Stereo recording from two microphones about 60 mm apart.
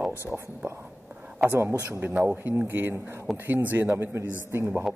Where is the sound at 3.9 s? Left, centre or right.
Right.